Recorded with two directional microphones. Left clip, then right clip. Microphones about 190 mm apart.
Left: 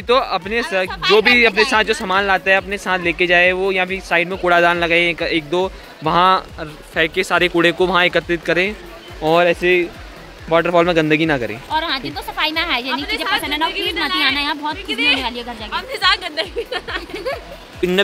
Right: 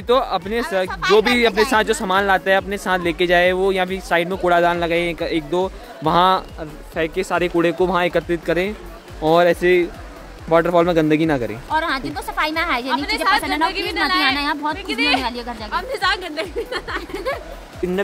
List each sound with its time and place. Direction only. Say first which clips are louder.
0.0 s speech: left 2 dB; 10° right (ahead or behind)
6.6 s speech: left 5 dB; centre (ahead or behind); by 9.8 s 25° right (ahead or behind)
10.5 s speech: left 1 dB; 10° right (ahead or behind)
13.0 s speech: right 2 dB; 25° right (ahead or behind)
13.4 s speech: even; 5° right (ahead or behind)
14.9 s a woman's voice: left 2 dB; 25° right (ahead or behind); by 17.0 s 50° right (ahead or behind)